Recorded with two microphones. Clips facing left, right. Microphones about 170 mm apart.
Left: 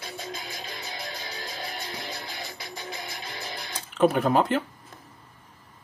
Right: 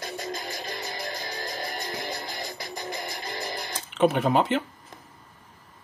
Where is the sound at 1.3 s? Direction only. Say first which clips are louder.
Right 3 dB; 10° left (ahead or behind).